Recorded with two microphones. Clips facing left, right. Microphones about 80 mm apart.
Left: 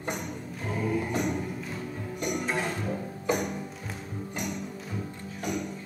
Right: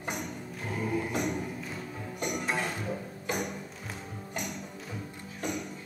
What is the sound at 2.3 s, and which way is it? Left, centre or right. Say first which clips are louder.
Music: left 2 dB; centre.